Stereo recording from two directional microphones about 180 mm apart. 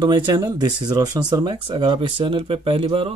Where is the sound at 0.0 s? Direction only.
25° right (ahead or behind).